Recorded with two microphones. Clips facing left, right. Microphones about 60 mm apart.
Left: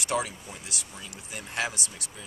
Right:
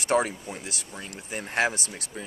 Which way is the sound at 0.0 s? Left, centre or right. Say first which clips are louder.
Right 5 dB; right.